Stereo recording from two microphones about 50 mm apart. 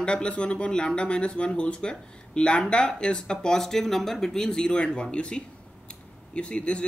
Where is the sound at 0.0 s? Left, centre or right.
Centre.